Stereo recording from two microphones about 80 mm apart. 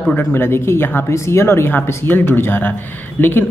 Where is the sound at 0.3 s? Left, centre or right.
Left.